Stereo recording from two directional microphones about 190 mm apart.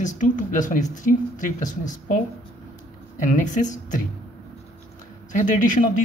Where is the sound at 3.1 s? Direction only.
40° left (ahead or behind).